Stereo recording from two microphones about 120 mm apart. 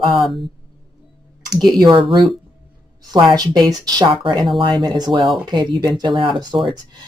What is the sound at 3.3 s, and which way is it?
Speech, 35° right (ahead or behind).